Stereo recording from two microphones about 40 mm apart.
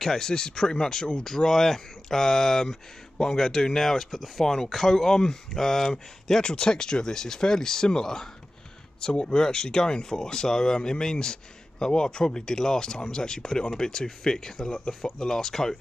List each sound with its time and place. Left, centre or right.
0.0 s speech: centre